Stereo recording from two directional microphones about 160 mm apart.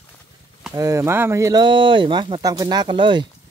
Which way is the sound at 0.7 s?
20° right (ahead or behind).